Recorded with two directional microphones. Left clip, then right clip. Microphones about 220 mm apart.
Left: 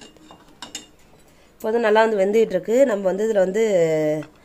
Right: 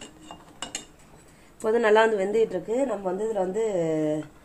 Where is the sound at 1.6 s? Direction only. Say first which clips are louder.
Left 3 dB; 15° left (ahead or behind).